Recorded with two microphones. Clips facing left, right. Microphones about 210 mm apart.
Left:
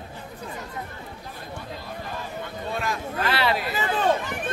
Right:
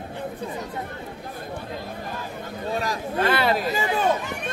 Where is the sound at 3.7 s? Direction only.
15° right (ahead or behind).